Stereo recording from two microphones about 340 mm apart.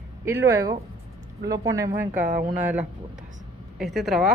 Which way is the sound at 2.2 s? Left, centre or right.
Right.